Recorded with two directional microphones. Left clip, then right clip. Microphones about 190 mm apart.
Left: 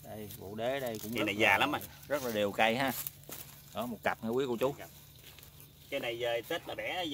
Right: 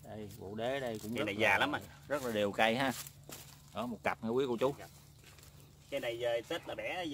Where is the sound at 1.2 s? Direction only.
35° left (ahead or behind).